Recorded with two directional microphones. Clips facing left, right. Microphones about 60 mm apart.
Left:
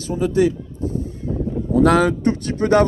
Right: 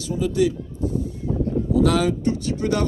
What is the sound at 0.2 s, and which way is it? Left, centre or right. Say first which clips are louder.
Speech: left 3 dB; left.